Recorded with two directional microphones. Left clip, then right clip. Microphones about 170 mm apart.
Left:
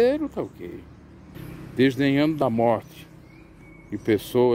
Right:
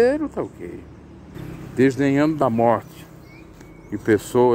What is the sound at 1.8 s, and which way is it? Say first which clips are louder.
Speech: right 3 dB; 20° left (ahead or behind).